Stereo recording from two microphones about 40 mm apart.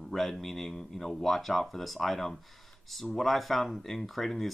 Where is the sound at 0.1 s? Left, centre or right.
Centre.